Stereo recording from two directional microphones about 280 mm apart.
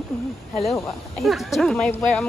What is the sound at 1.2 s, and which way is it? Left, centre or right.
Speech, centre.